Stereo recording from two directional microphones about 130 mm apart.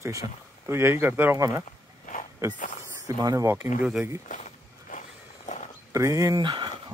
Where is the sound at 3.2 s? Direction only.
25° right (ahead or behind).